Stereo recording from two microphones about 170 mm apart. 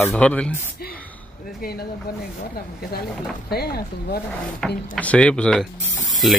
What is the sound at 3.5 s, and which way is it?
Speech, 65° left (ahead or behind).